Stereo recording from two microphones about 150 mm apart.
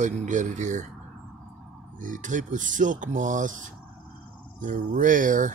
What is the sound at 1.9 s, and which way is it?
Speech, 60° right (ahead or behind).